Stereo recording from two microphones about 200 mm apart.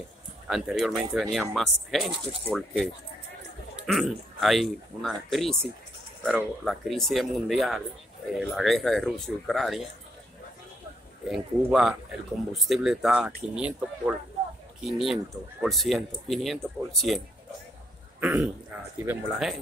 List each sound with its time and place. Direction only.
0.5 s speech: centre (ahead or behind)
11.2 s speech: centre (ahead or behind)
18.2 s speech: 5° right (ahead or behind)